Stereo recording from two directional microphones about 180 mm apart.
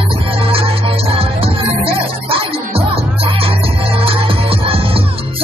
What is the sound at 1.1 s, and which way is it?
Music, 30° right (ahead or behind).